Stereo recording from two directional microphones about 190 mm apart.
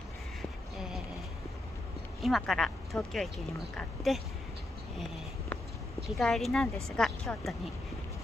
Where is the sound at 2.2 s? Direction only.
Centre (ahead or behind).